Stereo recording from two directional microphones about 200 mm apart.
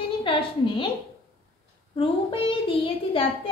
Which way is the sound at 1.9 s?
25° left (ahead or behind).